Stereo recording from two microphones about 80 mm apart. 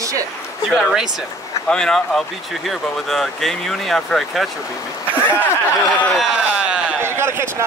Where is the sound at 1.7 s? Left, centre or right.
Centre.